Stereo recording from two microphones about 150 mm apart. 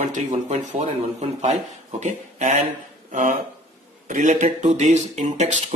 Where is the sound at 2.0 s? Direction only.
55° right (ahead or behind).